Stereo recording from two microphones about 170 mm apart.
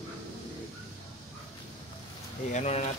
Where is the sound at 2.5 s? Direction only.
40° left (ahead or behind).